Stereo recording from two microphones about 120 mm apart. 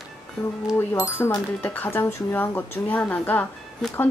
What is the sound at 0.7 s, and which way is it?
Speech, 20° left (ahead or behind).